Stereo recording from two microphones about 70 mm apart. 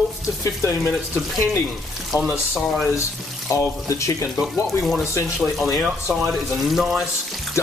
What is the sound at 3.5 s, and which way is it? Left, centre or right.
Speech, left.